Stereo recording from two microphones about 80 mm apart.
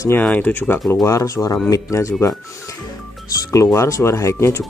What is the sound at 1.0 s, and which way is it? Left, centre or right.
Speech, left.